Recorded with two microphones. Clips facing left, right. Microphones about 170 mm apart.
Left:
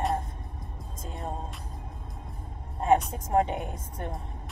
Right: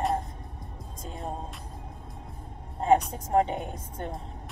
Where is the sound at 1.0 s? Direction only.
Centre (ahead or behind).